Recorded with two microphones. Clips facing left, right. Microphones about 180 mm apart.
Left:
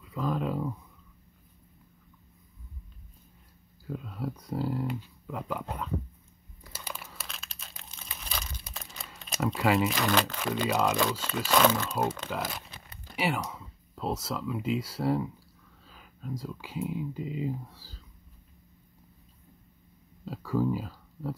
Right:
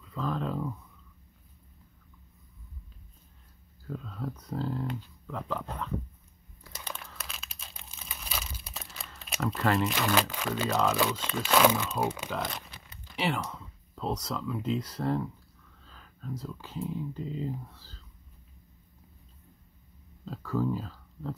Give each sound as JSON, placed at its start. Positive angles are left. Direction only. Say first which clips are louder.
{"t": 0.0, "sound": "speech", "louder": "left 2 dB", "side_deg": 10}
{"t": 3.8, "sound": "speech", "louder": "left 2 dB", "side_deg": 10}
{"t": 6.6, "sound": "crumpling", "louder": "even", "side_deg": 5}
{"t": 9.2, "sound": "camera", "louder": "left 2 dB", "side_deg": 0}
{"t": 9.6, "sound": "speech", "louder": "left 2 dB", "side_deg": 5}
{"t": 10.7, "sound": "speech", "louder": "even", "side_deg": 10}
{"t": 11.4, "sound": "speech", "louder": "even", "side_deg": -5}
{"t": 12.3, "sound": "speech", "louder": "even", "side_deg": 5}
{"t": 15.8, "sound": "a sound", "louder": "left 1 dB", "side_deg": 10}
{"t": 16.6, "sound": "speech", "louder": "left 2 dB", "side_deg": 10}
{"t": 20.2, "sound": "speech", "louder": "left 2 dB", "side_deg": 10}